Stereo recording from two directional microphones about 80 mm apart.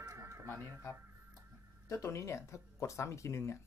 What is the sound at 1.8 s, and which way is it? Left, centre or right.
Speech, left.